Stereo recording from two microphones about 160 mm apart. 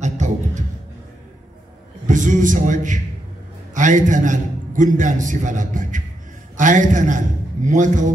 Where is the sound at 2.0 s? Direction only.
50° right (ahead or behind).